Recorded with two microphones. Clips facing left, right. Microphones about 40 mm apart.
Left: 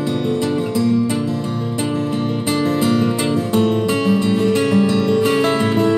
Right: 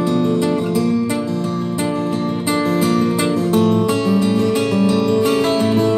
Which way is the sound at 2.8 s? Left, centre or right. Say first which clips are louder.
Right 1 dB; left.